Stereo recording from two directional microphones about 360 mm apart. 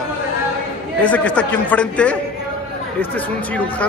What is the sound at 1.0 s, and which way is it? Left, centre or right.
Speech, centre.